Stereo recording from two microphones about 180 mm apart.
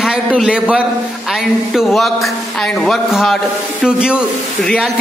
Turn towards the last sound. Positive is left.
turn(degrees=5)  # may be behind; listen again after turning